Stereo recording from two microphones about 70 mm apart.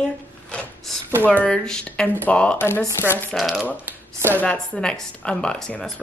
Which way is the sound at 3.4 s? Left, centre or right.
Centre.